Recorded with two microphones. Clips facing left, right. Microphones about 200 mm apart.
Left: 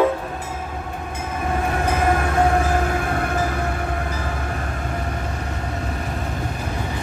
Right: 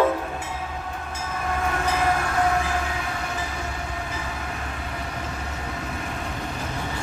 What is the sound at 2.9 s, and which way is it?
Train, 55° left (ahead or behind).